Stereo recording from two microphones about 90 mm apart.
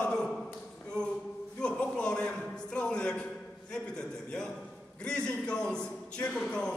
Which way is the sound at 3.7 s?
10° left (ahead or behind).